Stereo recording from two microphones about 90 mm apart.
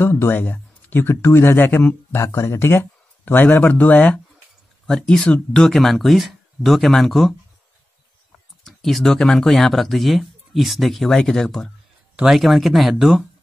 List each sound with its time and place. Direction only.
0.0 s speech: 25° left (ahead or behind)
2.2 s speech: 35° left (ahead or behind); by 4.2 s 20° left (ahead or behind)
4.8 s speech: 10° left (ahead or behind)
8.6 s speech: 5° left (ahead or behind)